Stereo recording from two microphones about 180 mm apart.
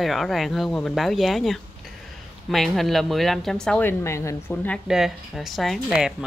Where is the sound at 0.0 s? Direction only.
Centre (ahead or behind).